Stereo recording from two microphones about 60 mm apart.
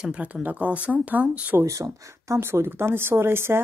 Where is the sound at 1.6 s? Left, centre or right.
Right.